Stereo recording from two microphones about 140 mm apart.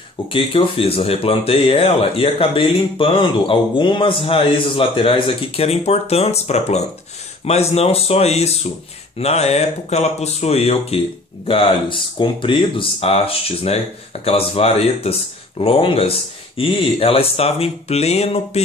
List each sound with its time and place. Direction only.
0.3 s speech: 40° left (ahead or behind)